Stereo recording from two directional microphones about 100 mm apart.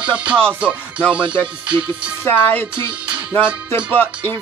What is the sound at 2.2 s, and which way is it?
Music, 20° left (ahead or behind).